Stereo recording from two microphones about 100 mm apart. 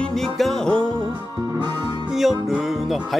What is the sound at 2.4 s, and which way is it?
Music, 5° right (ahead or behind).